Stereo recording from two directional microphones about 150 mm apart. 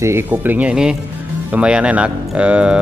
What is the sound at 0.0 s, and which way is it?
Speech, 15° right (ahead or behind).